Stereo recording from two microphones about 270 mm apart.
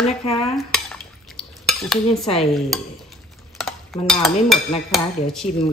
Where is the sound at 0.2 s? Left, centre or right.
Left.